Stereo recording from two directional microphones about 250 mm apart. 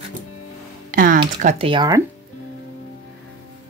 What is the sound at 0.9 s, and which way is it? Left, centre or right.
Music, right.